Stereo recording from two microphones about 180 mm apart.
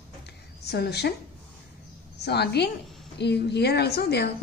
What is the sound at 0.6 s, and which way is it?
Speech, 65° left (ahead or behind).